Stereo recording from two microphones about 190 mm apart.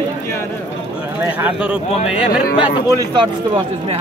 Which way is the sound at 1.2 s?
10° right (ahead or behind).